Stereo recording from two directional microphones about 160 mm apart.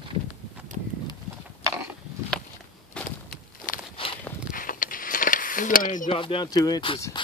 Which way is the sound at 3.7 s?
60° left (ahead or behind).